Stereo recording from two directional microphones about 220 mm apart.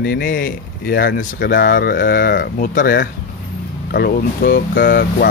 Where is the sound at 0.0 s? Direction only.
40° left (ahead or behind).